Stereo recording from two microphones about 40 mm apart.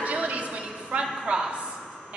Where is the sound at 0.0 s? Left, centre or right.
Right.